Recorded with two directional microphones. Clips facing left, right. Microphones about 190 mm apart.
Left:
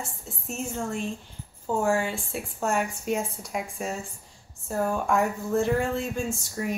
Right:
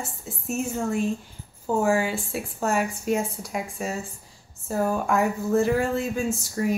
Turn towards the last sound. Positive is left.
turn(degrees=-5)  # may be behind; listen again after turning